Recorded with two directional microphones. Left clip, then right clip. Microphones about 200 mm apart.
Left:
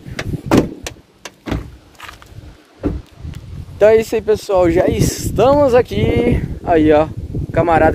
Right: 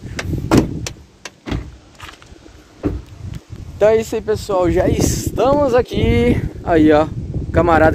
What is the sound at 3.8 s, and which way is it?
Speech, 10° left (ahead or behind).